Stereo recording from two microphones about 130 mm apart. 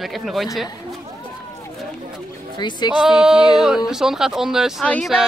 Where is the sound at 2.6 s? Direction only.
35° left (ahead or behind).